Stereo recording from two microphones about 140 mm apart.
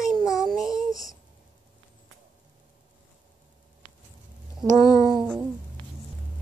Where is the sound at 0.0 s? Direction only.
Centre (ahead or behind).